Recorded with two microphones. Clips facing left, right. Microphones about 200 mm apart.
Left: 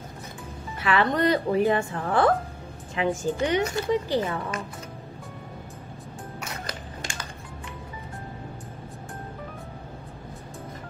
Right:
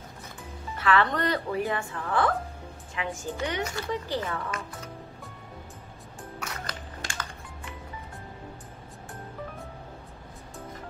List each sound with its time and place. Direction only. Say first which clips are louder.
0.7 s speech: left 2 dB; 15° left (ahead or behind)
1.8 s a woman's voice: left 4 dB; 30° left (ahead or behind)